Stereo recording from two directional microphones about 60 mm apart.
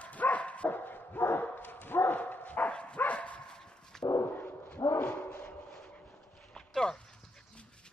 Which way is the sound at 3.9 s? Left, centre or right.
Centre.